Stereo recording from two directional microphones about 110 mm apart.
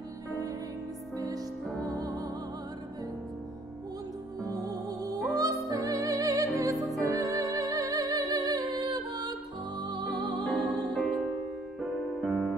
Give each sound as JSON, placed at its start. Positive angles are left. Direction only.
{"t": 0.3, "sound": "music", "side_deg": -30}
{"t": 4.5, "sound": "music", "side_deg": -35}
{"t": 10.4, "sound": "music", "side_deg": 10}